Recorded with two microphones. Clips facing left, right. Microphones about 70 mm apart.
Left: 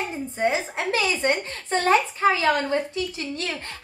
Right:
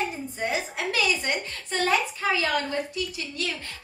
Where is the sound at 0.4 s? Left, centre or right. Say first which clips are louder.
Left 5 dB; left.